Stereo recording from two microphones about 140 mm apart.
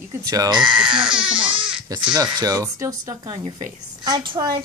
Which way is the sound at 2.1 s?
30° right (ahead or behind).